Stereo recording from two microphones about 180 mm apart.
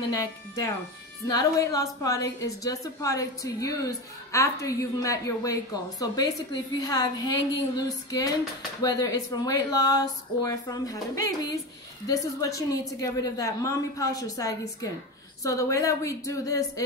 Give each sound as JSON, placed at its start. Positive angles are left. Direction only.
{"t": 0.1, "sound": "a woman's voice", "side_deg": 20}